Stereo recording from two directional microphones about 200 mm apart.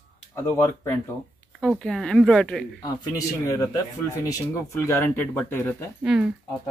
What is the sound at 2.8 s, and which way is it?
Speech, 15° left (ahead or behind).